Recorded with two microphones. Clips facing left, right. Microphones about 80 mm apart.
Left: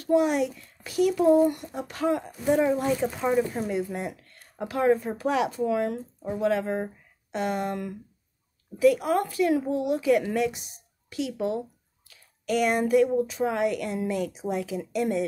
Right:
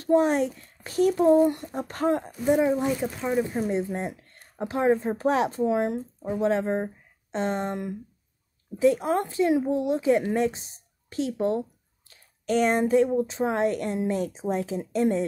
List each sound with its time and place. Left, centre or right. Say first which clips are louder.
0.0 s a child's voice: right 1 dB; right
1.8 s speech: right 1 dB; right
2.4 s speech: right 1 dB; centre
3.6 s a woman's voice: right 2 dB; right